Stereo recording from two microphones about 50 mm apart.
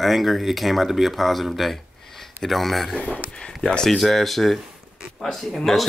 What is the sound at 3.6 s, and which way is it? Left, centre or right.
Speech, centre.